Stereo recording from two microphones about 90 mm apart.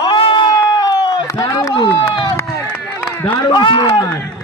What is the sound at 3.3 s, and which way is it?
Speech, 55° left (ahead or behind).